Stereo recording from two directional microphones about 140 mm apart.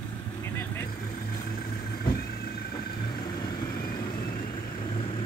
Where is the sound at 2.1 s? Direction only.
90° left.